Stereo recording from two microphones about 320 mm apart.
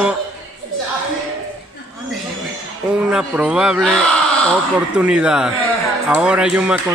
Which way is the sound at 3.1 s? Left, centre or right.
Centre.